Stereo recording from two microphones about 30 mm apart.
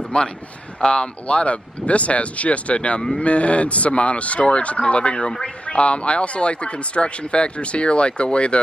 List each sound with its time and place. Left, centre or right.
0.1 s speech: left